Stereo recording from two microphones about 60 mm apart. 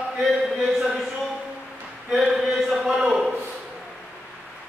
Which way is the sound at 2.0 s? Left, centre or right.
Centre.